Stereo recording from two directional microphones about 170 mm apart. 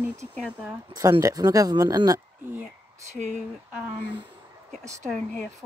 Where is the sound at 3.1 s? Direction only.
45° right (ahead or behind).